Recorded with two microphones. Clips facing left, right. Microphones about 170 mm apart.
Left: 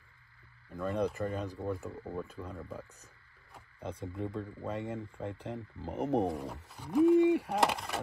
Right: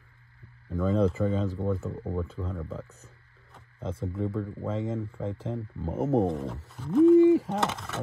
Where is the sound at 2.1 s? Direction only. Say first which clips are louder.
Right 6 dB; 15° left (ahead or behind).